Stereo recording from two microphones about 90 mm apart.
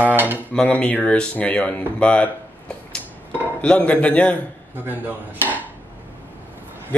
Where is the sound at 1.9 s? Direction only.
15° left (ahead or behind).